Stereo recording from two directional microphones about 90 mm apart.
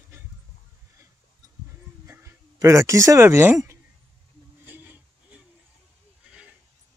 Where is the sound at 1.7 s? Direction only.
30° right (ahead or behind).